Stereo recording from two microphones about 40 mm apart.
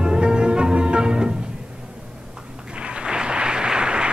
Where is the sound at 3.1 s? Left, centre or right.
Right.